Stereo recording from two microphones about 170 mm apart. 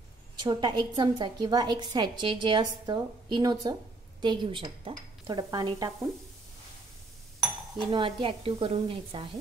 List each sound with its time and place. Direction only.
0.5 s a woman's voice: 25° right (ahead or behind)
7.7 s a woman's voice: 25° right (ahead or behind)